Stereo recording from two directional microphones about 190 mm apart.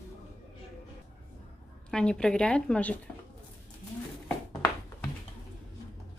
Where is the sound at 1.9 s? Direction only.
5° left (ahead or behind).